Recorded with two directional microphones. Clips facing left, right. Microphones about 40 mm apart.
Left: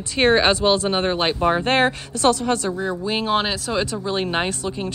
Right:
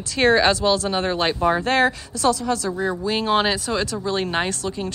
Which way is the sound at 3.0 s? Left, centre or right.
Centre.